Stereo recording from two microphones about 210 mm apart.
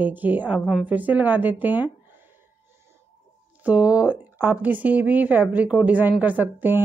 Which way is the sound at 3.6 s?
5° right (ahead or behind).